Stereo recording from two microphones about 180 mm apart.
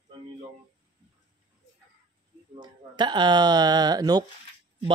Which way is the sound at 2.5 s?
25° right (ahead or behind).